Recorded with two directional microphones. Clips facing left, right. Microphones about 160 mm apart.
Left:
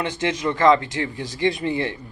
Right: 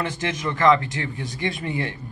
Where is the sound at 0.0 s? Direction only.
25° left (ahead or behind).